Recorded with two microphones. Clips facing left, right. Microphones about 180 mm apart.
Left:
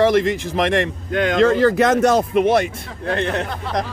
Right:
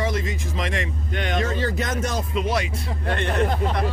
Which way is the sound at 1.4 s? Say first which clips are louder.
Left 13 dB; 70° left (ahead or behind).